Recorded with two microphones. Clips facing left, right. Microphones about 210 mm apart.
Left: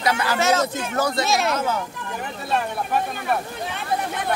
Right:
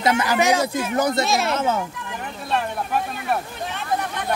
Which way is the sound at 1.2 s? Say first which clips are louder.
Even; centre (ahead or behind).